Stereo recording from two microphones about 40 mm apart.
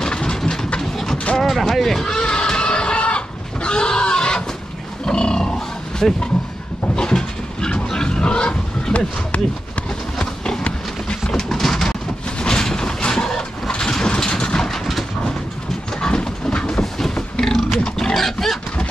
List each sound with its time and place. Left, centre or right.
0.0 s train: centre
1.1 s vehicle: left
1.4 s a sound: centre; by 4.4 s left
5.0 s roaring cats: left
7.0 s vehicle: centre
9.3 s speech: left
10.1 s clip-clop: centre
11.4 s a sound: centre
12.4 s train: centre
16.0 s a sound: centre
17.8 s wild animals: centre
18.1 s roaring cats: centre